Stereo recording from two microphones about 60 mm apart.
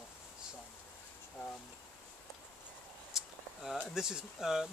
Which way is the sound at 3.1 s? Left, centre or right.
Centre.